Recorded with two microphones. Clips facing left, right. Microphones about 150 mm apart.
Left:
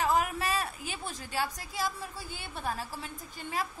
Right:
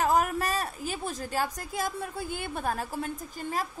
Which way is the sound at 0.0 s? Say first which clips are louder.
Right 3 dB; 45° right (ahead or behind).